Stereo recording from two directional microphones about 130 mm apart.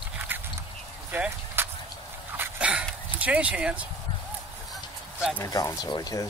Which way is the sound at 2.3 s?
10° right (ahead or behind).